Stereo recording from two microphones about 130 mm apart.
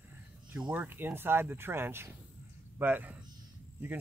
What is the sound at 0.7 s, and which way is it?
Speech, 15° right (ahead or behind).